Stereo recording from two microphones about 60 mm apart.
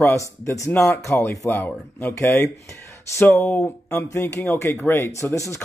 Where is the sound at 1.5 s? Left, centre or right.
Left.